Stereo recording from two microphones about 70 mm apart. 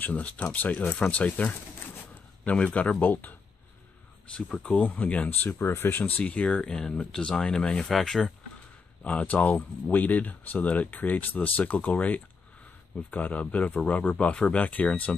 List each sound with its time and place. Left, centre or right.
0.0 s speech: left
4.6 s speech: left
5.6 s speech: left; by 8.3 s centre
9.0 s speech: centre